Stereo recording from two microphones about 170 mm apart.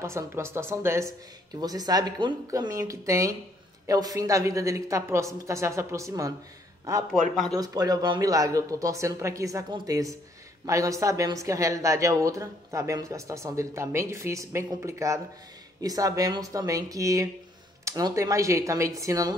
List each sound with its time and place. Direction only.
0.0 s a woman's voice: 15° right (ahead or behind)
7.5 s a woman's voice: 20° right (ahead or behind)